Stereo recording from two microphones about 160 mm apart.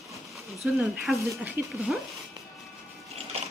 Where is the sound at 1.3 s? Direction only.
15° right (ahead or behind).